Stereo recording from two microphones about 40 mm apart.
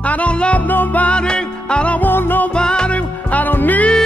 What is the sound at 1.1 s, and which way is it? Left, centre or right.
Music, left.